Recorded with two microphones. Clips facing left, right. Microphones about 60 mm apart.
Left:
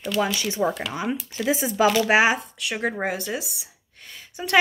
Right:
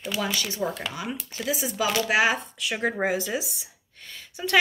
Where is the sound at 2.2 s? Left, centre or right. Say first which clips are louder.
Left 2 dB; centre.